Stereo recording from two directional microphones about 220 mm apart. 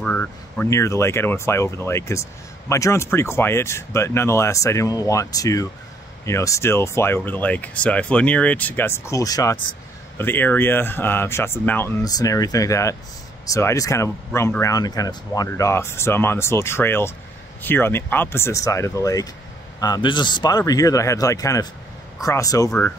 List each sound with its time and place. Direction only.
0.0 s speech: 5° left (ahead or behind)